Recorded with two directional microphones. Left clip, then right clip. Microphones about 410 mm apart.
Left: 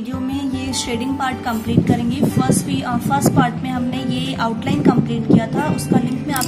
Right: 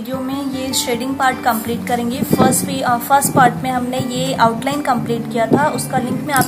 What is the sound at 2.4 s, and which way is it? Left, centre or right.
A woman's voice, centre.